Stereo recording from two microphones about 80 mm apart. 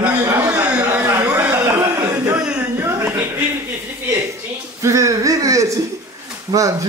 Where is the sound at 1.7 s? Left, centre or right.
Right.